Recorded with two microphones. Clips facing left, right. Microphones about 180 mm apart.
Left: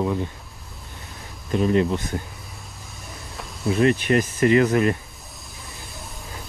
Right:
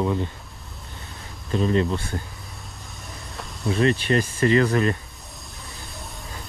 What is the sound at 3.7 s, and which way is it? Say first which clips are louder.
Speech: left 2 dB; 15° left (ahead or behind).